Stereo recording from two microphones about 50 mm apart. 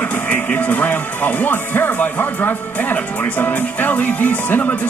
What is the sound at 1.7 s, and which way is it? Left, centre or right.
Speech, left.